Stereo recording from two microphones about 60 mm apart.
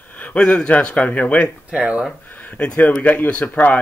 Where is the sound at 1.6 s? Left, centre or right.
Centre.